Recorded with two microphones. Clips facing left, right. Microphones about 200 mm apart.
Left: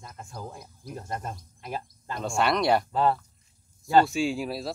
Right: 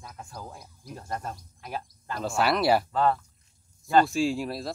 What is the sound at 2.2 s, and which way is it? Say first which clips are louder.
Speech: even; 5° right (ahead or behind).